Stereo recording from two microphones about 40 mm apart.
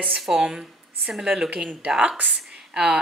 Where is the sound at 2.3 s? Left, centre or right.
Centre.